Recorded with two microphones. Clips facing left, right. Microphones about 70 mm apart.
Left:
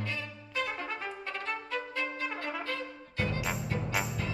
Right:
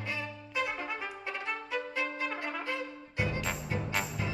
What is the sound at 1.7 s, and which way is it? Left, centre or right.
Trumpet, centre.